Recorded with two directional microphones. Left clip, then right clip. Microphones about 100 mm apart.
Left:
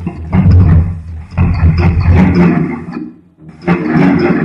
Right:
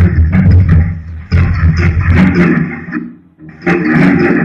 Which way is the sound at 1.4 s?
25° left (ahead or behind).